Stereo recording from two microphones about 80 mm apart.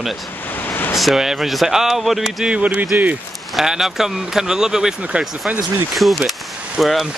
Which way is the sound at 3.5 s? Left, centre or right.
Centre.